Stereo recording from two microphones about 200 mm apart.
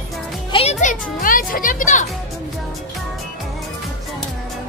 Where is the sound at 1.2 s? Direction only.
45° left (ahead or behind).